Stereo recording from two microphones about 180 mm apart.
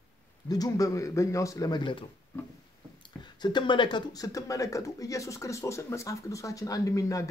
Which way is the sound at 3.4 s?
25° left (ahead or behind).